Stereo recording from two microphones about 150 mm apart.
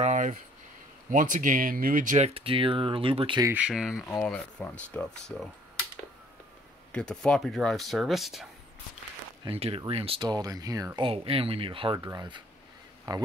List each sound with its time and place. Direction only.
0.0 s speech: 55° right (ahead or behind); by 3.4 s 35° right (ahead or behind)
3.5 s speech: 5° right (ahead or behind)
4.1 s speech: 10° left (ahead or behind)
6.9 s speech: 5° left (ahead or behind)
9.5 s speech: 40° right (ahead or behind); by 11.1 s 25° right (ahead or behind)
11.1 s speech: 40° right (ahead or behind)